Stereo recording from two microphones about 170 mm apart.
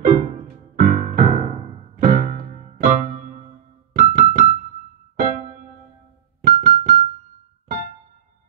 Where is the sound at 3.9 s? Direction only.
50° right (ahead or behind).